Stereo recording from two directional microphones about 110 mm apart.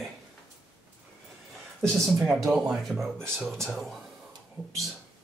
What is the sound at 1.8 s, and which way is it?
Speech, centre (ahead or behind).